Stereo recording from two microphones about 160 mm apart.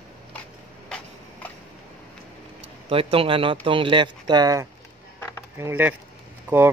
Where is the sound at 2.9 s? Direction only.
35° right (ahead or behind).